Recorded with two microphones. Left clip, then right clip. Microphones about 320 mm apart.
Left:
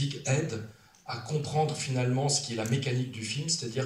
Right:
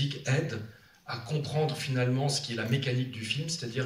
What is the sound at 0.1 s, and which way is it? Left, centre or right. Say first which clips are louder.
Speech: even; centre.